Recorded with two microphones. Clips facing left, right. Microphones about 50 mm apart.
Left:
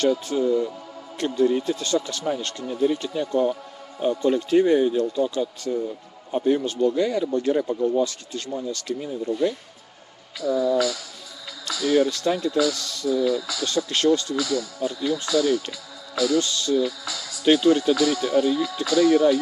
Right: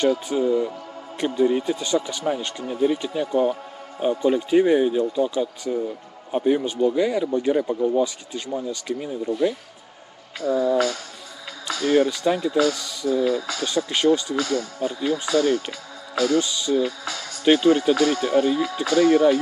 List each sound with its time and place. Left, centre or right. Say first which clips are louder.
0.3 s speech: right 1 dB; right
10.3 s speech: right 1 dB; right
12.1 s speech: right 2 dB; centre
13.1 s speech: right 1 dB; right
13.8 s speech: right 1 dB; centre
14.3 s speech: right 1 dB; right
15.7 s music: right 3 dB; right
16.3 s speech: right 1 dB; centre
16.7 s speech: right 1 dB; right